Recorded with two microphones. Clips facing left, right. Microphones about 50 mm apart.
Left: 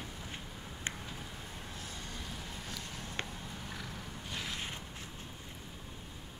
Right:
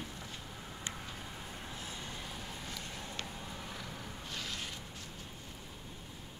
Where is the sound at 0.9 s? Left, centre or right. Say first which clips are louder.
Left 4 dB; left.